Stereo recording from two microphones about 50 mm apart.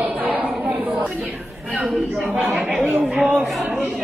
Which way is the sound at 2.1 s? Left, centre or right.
Centre.